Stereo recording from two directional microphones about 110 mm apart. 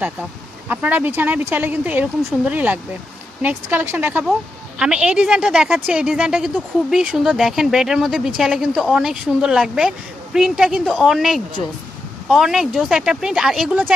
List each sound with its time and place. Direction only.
0.7 s speech: 15° right (ahead or behind)